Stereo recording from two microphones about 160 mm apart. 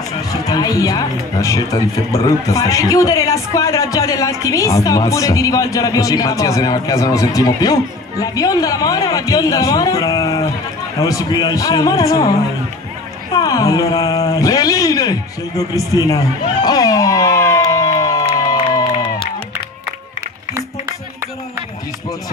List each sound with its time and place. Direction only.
0.3 s speech: 20° left (ahead or behind)
13.3 s speech: 25° left (ahead or behind)
16.6 s music: 25° left (ahead or behind)
18.3 s crowd: 25° left (ahead or behind)